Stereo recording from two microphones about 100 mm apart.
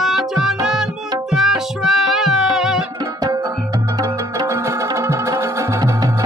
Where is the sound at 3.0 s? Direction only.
30° right (ahead or behind).